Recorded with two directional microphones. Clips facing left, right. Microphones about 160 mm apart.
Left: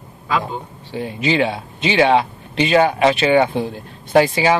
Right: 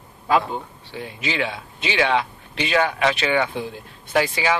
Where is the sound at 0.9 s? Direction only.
25° left (ahead or behind).